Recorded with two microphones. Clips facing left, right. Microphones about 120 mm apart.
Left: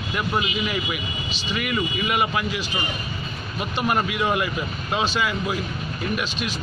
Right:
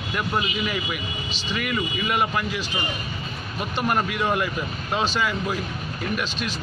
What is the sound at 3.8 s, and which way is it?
Speech, 5° left (ahead or behind).